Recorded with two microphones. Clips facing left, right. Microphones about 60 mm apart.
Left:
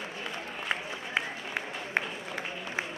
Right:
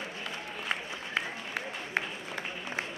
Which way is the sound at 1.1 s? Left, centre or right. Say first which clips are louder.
Left 1 dB; centre.